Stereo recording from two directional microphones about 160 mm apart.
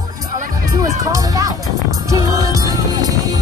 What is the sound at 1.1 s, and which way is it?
Speech, 20° right (ahead or behind).